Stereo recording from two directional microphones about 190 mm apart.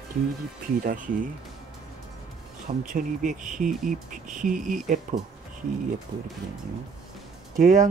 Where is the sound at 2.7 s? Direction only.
45° right (ahead or behind).